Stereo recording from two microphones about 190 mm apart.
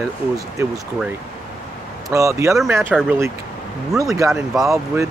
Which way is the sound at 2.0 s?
15° right (ahead or behind).